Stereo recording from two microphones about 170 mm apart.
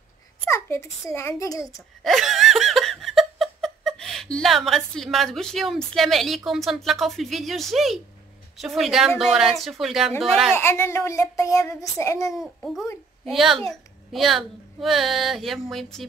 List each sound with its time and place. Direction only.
0.5 s a child's voice: 15° left (ahead or behind)
2.0 s laughter: centre (ahead or behind)
8.5 s speech: centre (ahead or behind)
10.5 s a child's voice: 15° left (ahead or behind)
12.4 s speech: centre (ahead or behind)